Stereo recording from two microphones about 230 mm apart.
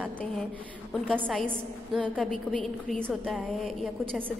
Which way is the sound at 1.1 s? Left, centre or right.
Centre.